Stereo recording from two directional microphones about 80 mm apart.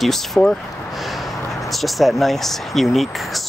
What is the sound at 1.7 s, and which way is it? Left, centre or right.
Speech, centre.